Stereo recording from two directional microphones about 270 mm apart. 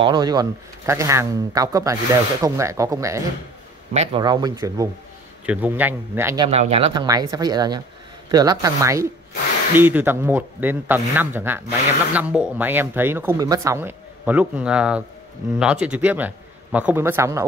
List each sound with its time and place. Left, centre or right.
0.0 s speech: centre
3.9 s speech: right